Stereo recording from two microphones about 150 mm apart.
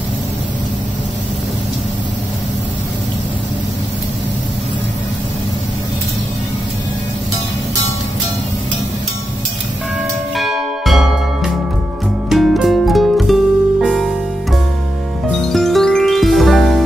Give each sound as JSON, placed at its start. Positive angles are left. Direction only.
{"t": 10.3, "sound": "church bell", "side_deg": 0}
{"t": 12.3, "sound": "music", "side_deg": 0}